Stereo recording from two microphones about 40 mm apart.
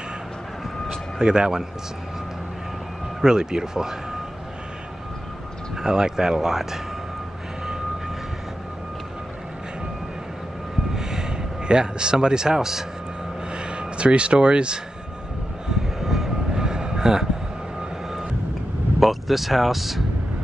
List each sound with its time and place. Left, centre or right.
0.8 s a sound: centre
3.2 s speech: centre
5.8 s speech: centre
11.0 s speech: centre
13.5 s a sound: right
15.7 s vehicle: centre
16.5 s train: centre
18.9 s speech: centre